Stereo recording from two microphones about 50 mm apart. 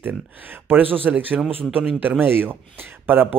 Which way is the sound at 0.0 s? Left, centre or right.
Right.